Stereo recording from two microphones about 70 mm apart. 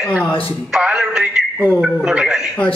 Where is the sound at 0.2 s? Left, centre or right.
Left.